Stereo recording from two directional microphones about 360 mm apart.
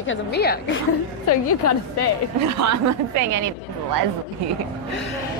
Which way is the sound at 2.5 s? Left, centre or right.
Right.